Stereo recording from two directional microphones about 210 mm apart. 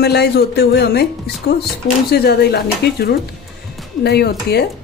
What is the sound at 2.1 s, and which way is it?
Speech, 50° left (ahead or behind).